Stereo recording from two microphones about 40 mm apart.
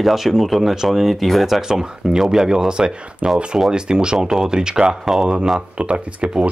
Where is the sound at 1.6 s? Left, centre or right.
Centre.